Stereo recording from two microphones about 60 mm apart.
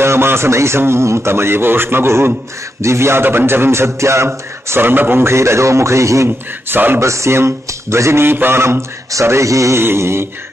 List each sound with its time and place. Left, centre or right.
0.0 s a man's voice: right
4.6 s a man's voice: right
6.2 s speech: right
7.0 s a man's voice: right
9.1 s speech: right
9.8 s a man's voice: right